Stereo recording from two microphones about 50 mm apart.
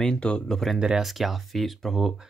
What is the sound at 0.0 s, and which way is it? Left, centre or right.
Speech, centre.